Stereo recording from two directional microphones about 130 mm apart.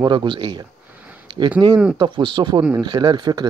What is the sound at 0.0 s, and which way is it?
Speech, 40° right (ahead or behind).